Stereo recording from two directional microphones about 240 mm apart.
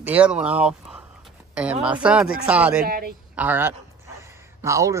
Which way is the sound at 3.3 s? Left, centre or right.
Centre.